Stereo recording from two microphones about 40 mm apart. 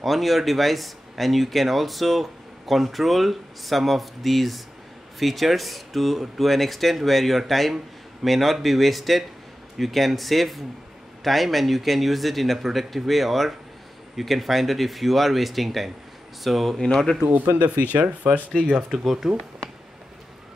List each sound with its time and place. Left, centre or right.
0.0 s speech: centre
17.6 s speech: right
18.8 s speech: centre